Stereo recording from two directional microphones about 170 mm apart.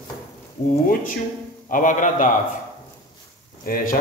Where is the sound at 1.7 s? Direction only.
50° left (ahead or behind).